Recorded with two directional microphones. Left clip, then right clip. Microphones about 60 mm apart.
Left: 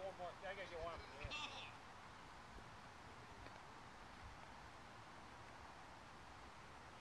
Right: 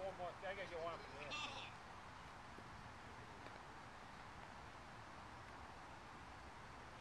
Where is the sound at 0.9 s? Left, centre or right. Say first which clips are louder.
Right 2 dB; left.